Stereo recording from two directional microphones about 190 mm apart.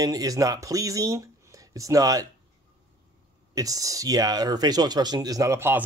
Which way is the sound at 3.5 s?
20° right (ahead or behind).